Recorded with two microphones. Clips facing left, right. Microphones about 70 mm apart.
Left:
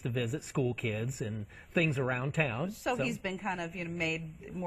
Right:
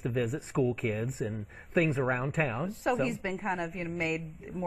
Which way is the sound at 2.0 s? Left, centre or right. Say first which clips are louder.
Right 3 dB; centre.